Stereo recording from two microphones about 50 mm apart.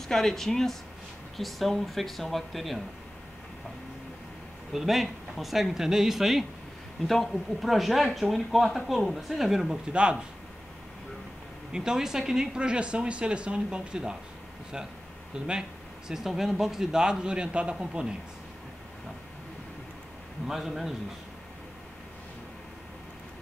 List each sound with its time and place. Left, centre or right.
0.1 s speech: centre
4.7 s speech: centre
11.7 s speech: centre
15.3 s a man's voice: centre
20.4 s speech: centre